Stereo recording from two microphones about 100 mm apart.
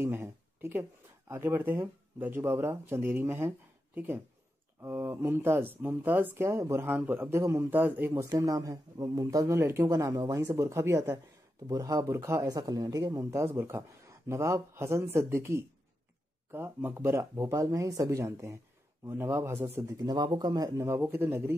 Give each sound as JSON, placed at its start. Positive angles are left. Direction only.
{"t": 0.0, "sound": "speech", "side_deg": -25}
{"t": 8.3, "sound": "speech", "side_deg": -35}
{"t": 12.4, "sound": "speech", "side_deg": -40}
{"t": 13.3, "sound": "speech", "side_deg": -25}
{"t": 20.0, "sound": "speech", "side_deg": -45}
{"t": 21.0, "sound": "speech", "side_deg": -20}